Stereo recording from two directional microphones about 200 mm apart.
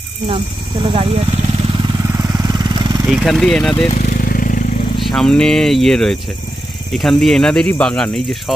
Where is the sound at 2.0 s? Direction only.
15° right (ahead or behind).